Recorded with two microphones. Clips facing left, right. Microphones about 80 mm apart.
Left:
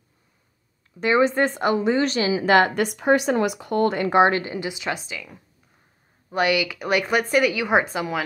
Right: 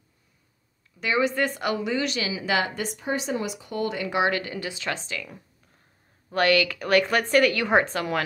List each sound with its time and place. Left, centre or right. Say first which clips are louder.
1.0 s speech: left 5 dB; left
2.5 s speech: left 8 dB; left; by 5.3 s centre
6.3 s a woman's voice: even; centre